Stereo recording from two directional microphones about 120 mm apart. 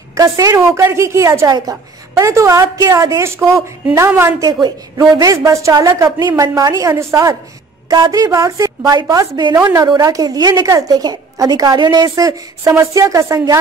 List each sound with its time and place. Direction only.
0.1 s a woman's voice: 30° right (ahead or behind)